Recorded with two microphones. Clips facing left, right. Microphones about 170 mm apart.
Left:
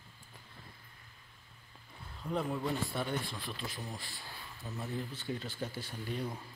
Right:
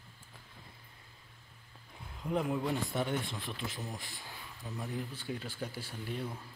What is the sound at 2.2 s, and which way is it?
A man's voice, 10° right (ahead or behind).